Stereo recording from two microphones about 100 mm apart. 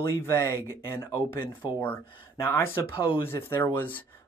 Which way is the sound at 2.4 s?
25° left (ahead or behind).